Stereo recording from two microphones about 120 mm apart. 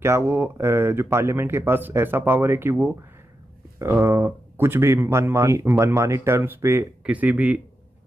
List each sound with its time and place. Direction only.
0.0 s speech: 20° right (ahead or behind)